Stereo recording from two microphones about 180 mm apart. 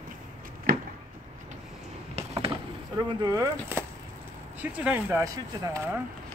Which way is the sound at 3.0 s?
20° right (ahead or behind).